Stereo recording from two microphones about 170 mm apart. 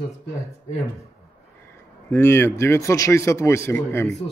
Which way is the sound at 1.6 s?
15° left (ahead or behind).